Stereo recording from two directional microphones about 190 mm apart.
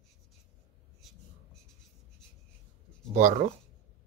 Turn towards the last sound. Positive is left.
turn(degrees=-35)  # may be behind; listen again after turning